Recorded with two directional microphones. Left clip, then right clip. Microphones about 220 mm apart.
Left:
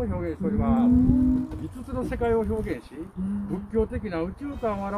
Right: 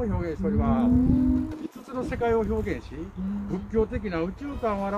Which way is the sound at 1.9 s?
35° left (ahead or behind).